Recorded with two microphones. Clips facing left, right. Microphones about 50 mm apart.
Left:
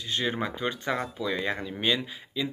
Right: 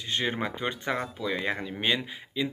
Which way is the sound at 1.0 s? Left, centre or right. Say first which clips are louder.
Left 1 dB; centre.